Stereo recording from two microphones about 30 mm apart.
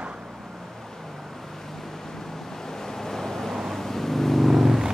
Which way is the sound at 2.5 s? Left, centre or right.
Centre.